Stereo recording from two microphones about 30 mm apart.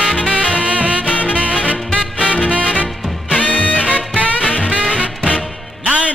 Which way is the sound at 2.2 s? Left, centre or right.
Right.